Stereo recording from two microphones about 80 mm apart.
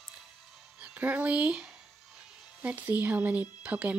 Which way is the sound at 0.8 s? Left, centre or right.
Centre.